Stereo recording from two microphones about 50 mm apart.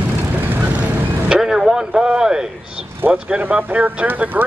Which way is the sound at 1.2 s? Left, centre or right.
Centre.